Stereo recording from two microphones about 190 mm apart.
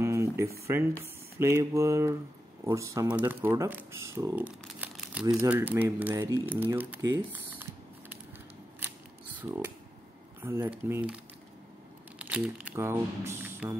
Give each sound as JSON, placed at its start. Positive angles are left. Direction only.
{"t": 0.0, "sound": "a sound", "side_deg": -15}
{"t": 1.4, "sound": "speech", "side_deg": -15}
{"t": 4.5, "sound": "crumpling", "side_deg": -5}
{"t": 5.3, "sound": "speech", "side_deg": -10}
{"t": 8.7, "sound": "scissors", "side_deg": -10}
{"t": 10.4, "sound": "speech", "side_deg": -10}
{"t": 12.2, "sound": "speech", "side_deg": -5}